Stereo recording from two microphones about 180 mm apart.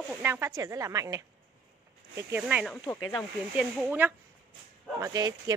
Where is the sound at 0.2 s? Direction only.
15° right (ahead or behind).